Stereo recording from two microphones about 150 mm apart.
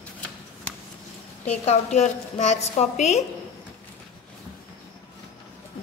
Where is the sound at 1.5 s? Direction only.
45° left (ahead or behind).